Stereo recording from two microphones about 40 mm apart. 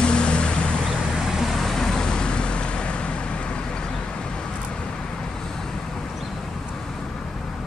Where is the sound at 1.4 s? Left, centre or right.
Centre; by 3.1 s left.